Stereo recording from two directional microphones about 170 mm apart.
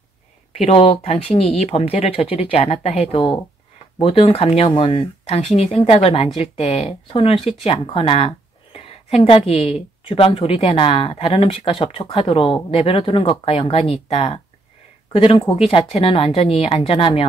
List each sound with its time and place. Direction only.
0.5 s speech: 35° left (ahead or behind)